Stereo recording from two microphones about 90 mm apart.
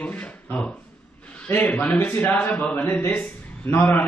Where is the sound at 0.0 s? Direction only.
15° left (ahead or behind).